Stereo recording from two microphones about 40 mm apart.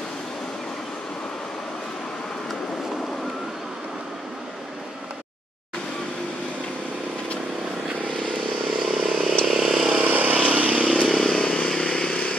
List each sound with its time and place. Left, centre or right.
8.8 s vehicle: centre
9.9 s vehicle: right
11.2 s vehicle: left